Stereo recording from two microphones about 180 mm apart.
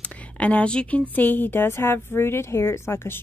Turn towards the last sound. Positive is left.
turn(degrees=15)  # may be behind; listen again after turning